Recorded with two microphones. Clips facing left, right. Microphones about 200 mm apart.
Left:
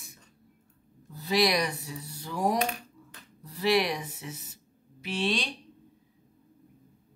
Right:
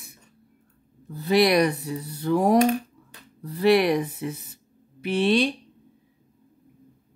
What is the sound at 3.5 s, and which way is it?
Speech, 60° right (ahead or behind).